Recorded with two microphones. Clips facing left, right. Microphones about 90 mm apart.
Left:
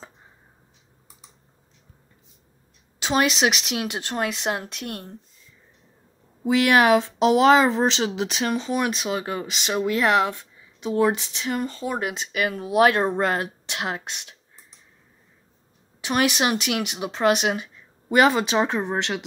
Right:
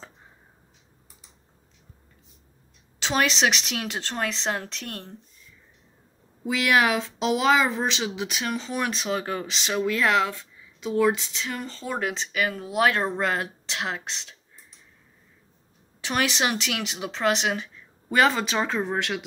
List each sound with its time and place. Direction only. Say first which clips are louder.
3.0 s speech: left 2 dB; 15° left (ahead or behind)
6.4 s speech: left 4 dB; 35° left (ahead or behind)
8.6 s speech: left 3 dB; 15° left (ahead or behind)
10.9 s speech: left 1 dB; 35° left (ahead or behind)
11.3 s speech: left 6 dB; 20° left (ahead or behind)
16.0 s speech: left 3 dB; 15° left (ahead or behind)